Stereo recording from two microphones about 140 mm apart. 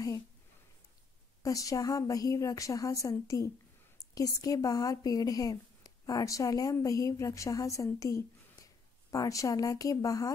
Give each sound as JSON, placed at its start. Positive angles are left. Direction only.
{"t": 1.4, "sound": "a woman's voice", "side_deg": 25}